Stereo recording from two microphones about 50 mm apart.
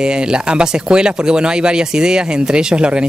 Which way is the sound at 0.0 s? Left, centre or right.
Centre.